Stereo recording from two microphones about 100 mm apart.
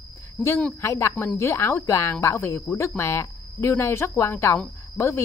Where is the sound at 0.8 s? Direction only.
30° left (ahead or behind).